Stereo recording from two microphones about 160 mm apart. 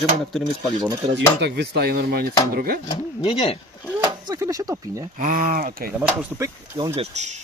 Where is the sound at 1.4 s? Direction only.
90° right; by 2.8 s 70° right (ahead or behind).